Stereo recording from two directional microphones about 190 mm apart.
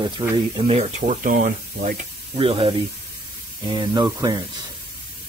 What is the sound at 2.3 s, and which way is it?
Speech, 30° right (ahead or behind).